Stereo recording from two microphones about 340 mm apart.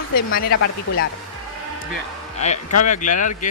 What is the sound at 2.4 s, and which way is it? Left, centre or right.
Speech, centre.